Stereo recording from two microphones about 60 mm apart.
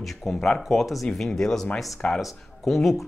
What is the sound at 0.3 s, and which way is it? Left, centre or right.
Speech, centre.